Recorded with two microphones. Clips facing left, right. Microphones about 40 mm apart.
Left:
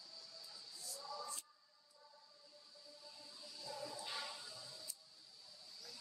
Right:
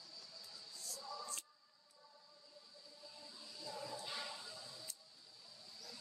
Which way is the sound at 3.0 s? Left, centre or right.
Centre.